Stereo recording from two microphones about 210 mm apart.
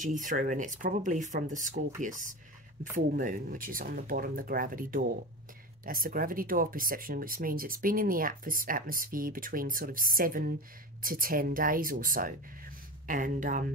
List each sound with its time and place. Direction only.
0.0 s speech: 35° right (ahead or behind)